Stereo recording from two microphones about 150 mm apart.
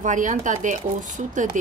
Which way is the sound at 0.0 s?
55° right (ahead or behind).